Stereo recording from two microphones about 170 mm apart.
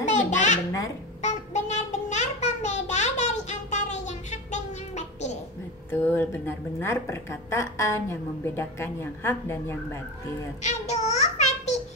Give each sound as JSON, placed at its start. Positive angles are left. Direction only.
{"t": 0.0, "sound": "a sound", "side_deg": 45}
{"t": 5.9, "sound": "a woman's voice", "side_deg": 10}
{"t": 10.7, "sound": "child singing", "side_deg": 40}